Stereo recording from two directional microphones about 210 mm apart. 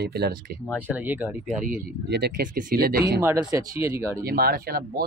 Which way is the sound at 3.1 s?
15° right (ahead or behind).